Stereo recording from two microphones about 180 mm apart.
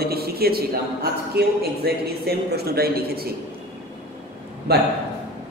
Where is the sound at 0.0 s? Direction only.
60° right (ahead or behind).